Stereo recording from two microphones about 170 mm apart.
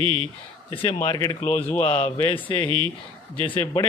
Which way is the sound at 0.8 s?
30° left (ahead or behind).